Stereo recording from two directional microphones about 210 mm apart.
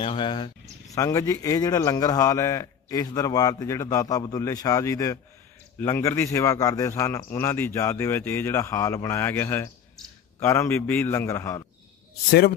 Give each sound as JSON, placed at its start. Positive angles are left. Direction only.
{"t": 0.0, "sound": "speech", "side_deg": 25}
{"t": 12.3, "sound": "speech", "side_deg": 50}